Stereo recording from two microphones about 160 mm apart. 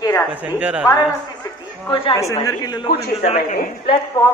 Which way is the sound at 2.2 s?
20° left (ahead or behind).